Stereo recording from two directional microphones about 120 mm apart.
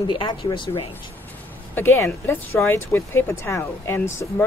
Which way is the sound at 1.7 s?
20° left (ahead or behind).